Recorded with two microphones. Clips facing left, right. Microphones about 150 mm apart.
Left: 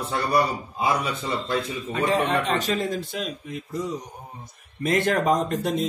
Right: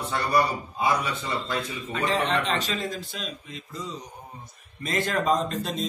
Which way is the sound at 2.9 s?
60° left (ahead or behind).